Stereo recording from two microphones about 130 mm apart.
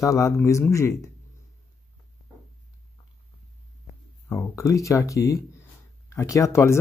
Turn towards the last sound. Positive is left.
turn(degrees=20)  # may be behind; listen again after turning